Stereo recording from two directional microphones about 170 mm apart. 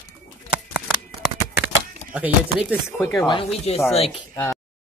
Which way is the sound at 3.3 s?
35° left (ahead or behind).